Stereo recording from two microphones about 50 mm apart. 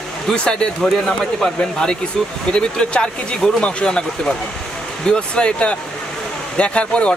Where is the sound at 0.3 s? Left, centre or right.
Centre.